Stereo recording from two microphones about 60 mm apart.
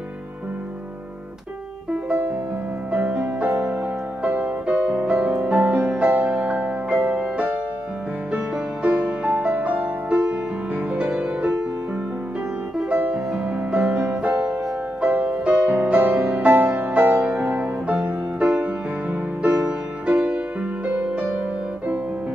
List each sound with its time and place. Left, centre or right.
1.9 s music: right
6.0 s music: right
6.3 s music: centre
13.1 s music: centre
15.0 s music: right
15.7 s music: right